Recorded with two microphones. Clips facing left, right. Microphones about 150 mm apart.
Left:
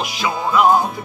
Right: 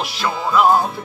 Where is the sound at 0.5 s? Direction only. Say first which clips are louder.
Even; 5° right (ahead or behind).